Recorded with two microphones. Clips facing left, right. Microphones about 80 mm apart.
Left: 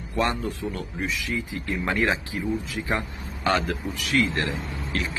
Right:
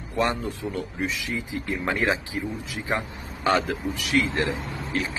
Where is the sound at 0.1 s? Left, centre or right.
Centre.